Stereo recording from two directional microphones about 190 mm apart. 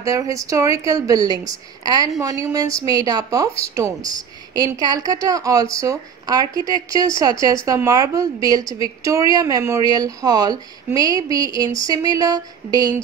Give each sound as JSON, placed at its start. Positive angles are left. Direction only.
{"t": 0.0, "sound": "a woman's voice", "side_deg": -15}